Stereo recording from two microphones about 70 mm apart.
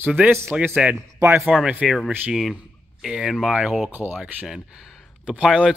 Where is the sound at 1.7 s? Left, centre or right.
Centre.